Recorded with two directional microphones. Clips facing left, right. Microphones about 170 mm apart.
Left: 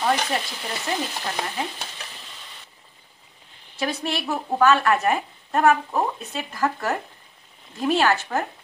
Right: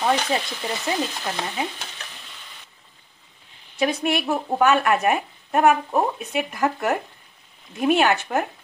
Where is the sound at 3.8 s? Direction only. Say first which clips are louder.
Right 4 dB; 15° right (ahead or behind).